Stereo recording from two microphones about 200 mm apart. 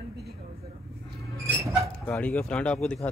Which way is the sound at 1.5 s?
10° right (ahead or behind).